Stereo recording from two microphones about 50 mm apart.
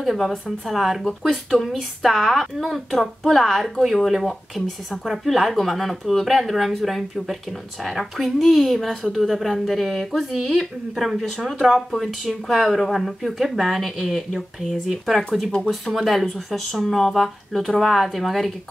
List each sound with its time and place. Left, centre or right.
0.0 s speech: centre